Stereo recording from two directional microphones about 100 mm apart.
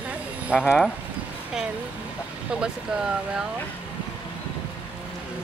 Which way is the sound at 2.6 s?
5° right (ahead or behind).